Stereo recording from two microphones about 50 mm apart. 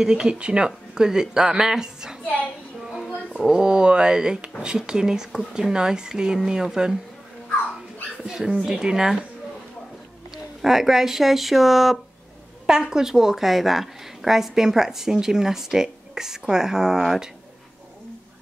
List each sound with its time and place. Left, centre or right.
0.0 s a woman's voice: centre
3.4 s a woman's voice: centre
8.2 s a woman's voice: centre
10.3 s a woman's voice: centre